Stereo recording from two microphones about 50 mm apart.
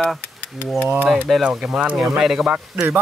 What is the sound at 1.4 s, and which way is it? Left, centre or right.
Speech, centre.